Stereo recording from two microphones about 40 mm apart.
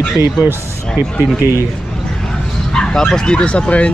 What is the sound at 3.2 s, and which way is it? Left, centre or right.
Speech, left.